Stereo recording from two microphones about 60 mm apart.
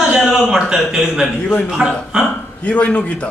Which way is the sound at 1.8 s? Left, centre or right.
Centre.